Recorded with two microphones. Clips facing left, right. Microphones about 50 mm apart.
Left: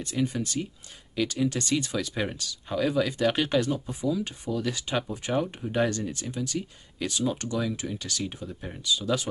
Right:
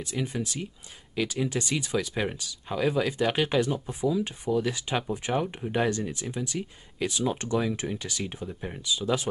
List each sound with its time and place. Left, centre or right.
0.0 s speech: centre
5.0 s speech: right
5.3 s speech: centre
7.2 s speech: right